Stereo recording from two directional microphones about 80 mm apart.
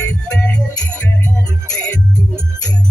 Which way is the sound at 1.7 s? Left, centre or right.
Centre.